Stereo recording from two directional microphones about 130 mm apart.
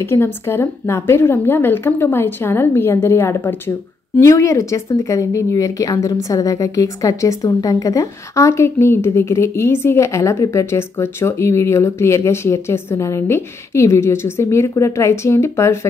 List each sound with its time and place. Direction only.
0.0 s a woman's voice: 20° left (ahead or behind)